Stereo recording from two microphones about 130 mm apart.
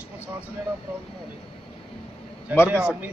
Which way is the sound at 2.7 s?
10° right (ahead or behind).